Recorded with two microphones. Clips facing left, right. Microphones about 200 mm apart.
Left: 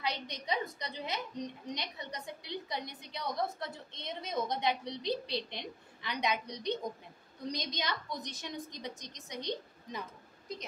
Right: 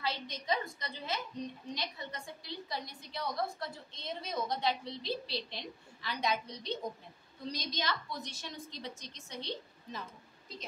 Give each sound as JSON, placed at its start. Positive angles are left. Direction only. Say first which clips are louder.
{"t": 0.0, "sound": "a woman's voice", "louder": "left 1 dB", "side_deg": 20}